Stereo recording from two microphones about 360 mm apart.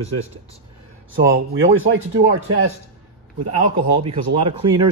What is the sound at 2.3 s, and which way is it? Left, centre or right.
Speech, right.